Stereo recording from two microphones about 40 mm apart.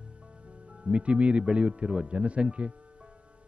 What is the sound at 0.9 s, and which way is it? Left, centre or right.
Speech, right.